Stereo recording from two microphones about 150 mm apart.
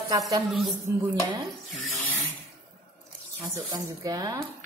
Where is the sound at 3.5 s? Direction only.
25° right (ahead or behind).